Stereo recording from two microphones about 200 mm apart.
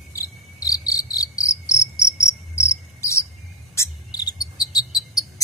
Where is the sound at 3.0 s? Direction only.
15° left (ahead or behind).